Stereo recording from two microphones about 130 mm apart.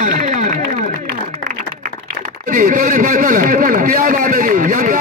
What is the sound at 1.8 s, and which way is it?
A man's voice, 85° right.